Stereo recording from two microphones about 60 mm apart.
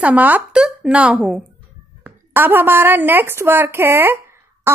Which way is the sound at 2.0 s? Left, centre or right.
Right.